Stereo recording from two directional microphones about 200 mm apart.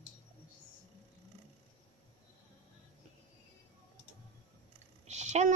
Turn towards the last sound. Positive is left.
turn(degrees=-35)  # may be behind; listen again after turning